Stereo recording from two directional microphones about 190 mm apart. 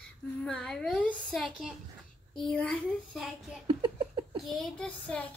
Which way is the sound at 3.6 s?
25° right (ahead or behind).